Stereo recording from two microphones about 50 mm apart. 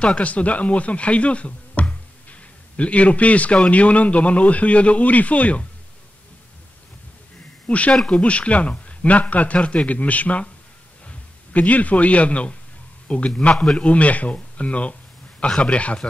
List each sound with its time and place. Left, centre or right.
0.0 s a man's voice: left
7.6 s speech: left
7.9 s speech: centre
8.2 s a man's voice: left